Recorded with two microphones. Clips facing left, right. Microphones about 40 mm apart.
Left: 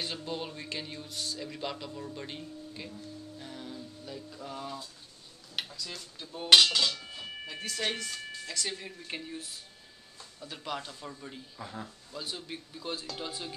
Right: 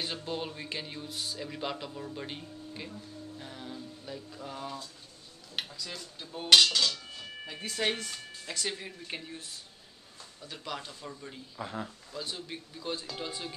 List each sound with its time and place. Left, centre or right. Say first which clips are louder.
0.0 s speech: right 1 dB; centre
3.3 s a sound: even; centre
5.6 s speech: even; centre
6.5 s speech: left 1 dB; centre
7.4 s speech: right 2 dB; centre
9.0 s speech: left 1 dB; centre
11.5 s speech: right 6 dB; centre
12.1 s speech: right 1 dB; centre